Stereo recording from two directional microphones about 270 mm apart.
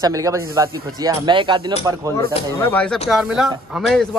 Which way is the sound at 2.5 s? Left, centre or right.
Centre.